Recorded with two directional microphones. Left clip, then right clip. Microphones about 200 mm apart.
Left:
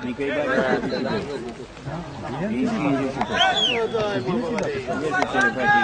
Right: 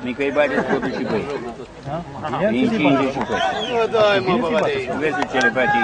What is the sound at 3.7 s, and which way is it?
Speech, 40° right (ahead or behind).